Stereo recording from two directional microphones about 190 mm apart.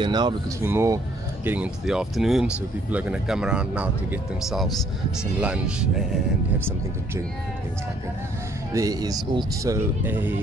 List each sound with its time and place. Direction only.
0.0 s a man's voice: 25° right (ahead or behind); by 6.0 s 5° right (ahead or behind)
8.7 s a man's voice: 20° right (ahead or behind)